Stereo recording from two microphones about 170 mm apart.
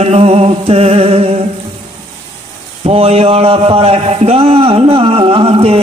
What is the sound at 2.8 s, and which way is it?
A man's voice, 35° right (ahead or behind).